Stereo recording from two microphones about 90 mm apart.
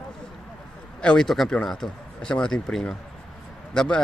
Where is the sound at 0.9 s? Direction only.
5° left (ahead or behind).